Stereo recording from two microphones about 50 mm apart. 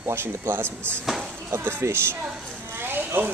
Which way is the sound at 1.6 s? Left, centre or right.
Right.